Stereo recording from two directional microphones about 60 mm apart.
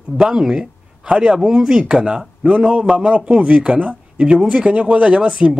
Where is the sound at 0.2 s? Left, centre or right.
Centre.